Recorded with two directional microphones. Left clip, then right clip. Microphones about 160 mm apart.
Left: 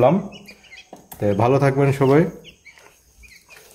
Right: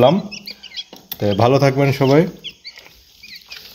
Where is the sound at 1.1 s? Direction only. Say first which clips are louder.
Right 3 dB; 25° right (ahead or behind).